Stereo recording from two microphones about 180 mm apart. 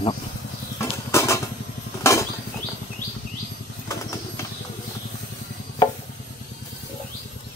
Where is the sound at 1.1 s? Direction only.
15° left (ahead or behind).